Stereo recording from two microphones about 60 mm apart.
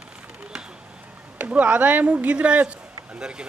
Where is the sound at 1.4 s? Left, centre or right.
Right.